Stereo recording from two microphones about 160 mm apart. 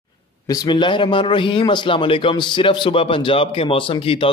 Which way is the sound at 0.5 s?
30° left (ahead or behind).